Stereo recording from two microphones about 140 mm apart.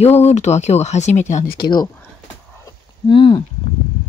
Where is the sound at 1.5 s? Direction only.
30° left (ahead or behind).